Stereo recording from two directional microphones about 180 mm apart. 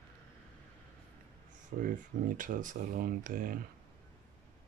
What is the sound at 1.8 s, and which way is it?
Speech, 50° right (ahead or behind).